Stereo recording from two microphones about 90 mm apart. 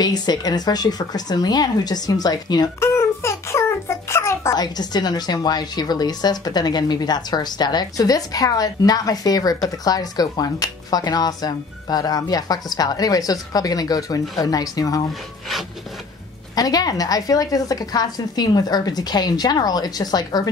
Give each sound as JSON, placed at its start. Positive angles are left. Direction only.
{"t": 0.0, "sound": "a woman's voice", "side_deg": 50}
{"t": 2.8, "sound": "a sound", "side_deg": 30}
{"t": 4.6, "sound": "a woman's voice", "side_deg": 50}
{"t": 16.5, "sound": "a woman's voice", "side_deg": 45}